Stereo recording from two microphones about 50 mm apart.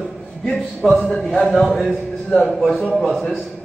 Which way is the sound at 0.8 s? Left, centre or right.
Centre.